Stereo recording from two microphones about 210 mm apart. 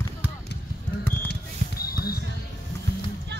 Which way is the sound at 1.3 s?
45° left (ahead or behind).